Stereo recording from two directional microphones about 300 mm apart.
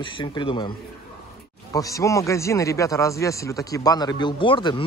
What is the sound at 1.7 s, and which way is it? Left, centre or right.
Speech, centre.